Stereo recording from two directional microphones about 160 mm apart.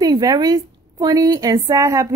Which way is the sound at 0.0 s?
25° right (ahead or behind).